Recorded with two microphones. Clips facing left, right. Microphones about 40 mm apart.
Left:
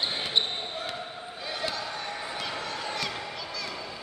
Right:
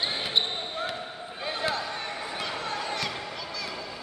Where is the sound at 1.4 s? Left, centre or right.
Right.